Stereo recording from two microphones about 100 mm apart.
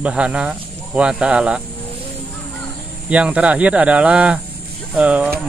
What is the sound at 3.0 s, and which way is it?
Speech, 10° right (ahead or behind).